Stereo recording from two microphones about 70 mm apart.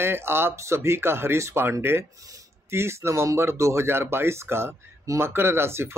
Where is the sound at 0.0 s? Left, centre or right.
Right.